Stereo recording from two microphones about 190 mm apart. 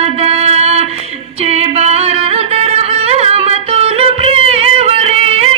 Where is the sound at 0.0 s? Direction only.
30° right (ahead or behind).